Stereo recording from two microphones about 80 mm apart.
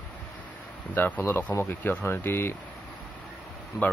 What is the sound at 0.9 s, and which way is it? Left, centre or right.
Speech, left.